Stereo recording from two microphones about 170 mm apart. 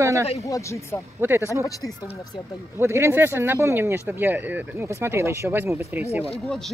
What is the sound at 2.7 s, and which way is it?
Speech, 15° right (ahead or behind).